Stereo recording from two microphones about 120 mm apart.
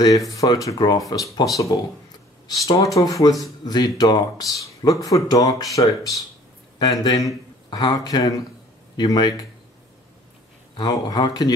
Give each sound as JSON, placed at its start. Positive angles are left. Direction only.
{"t": 0.4, "sound": "speech", "side_deg": 30}
{"t": 10.8, "sound": "speech", "side_deg": 35}